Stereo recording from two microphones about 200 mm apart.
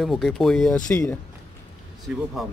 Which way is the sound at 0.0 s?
Centre (ahead or behind).